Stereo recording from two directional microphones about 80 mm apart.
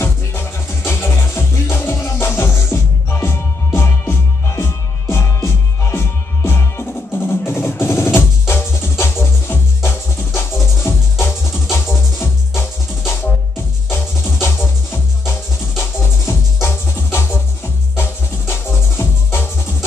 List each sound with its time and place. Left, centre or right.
0.0 s music: left
18.5 s music: left